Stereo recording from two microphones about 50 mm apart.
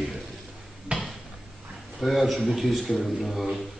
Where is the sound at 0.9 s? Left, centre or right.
Right.